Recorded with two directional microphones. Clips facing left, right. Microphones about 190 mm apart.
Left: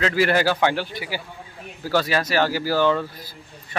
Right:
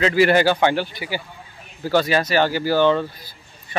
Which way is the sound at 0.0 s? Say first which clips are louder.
Right 4 dB; centre (ahead or behind).